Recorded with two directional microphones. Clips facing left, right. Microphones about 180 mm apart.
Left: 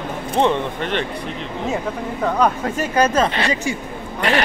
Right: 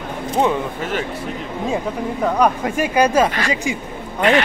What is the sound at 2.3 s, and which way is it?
Speech, 10° right (ahead or behind).